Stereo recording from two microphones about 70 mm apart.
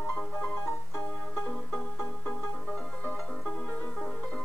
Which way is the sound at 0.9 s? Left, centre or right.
Left.